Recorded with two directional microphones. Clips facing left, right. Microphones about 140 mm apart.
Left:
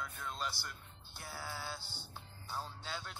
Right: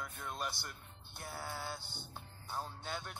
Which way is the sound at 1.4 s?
50° right (ahead or behind).